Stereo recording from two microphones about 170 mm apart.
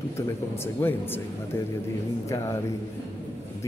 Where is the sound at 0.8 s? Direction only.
10° left (ahead or behind).